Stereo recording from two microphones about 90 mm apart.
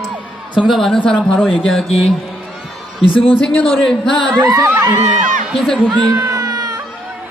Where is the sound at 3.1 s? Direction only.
80° left.